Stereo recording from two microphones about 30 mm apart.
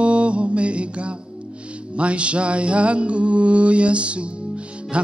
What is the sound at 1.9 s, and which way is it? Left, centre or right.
Music, right.